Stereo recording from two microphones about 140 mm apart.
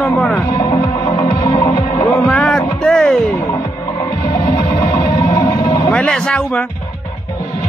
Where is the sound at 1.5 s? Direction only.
35° left (ahead or behind).